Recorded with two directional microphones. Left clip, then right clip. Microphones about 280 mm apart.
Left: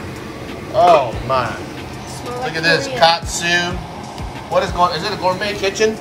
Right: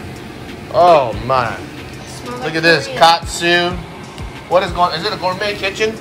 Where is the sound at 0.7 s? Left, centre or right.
Centre.